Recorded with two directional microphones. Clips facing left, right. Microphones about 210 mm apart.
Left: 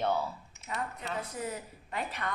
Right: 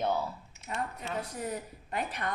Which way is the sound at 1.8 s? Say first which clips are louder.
Right 1 dB; 45° right (ahead or behind).